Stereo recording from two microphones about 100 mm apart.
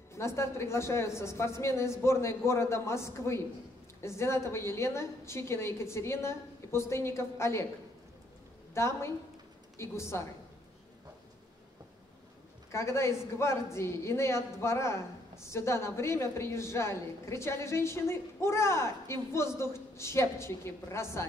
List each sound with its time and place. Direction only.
0.1 s a woman's voice: 25° left (ahead or behind)
8.7 s a woman's voice: 25° left (ahead or behind)
12.7 s a woman's voice: 25° left (ahead or behind)